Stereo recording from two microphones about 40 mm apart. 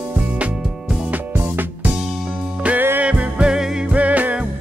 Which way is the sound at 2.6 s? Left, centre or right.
Right.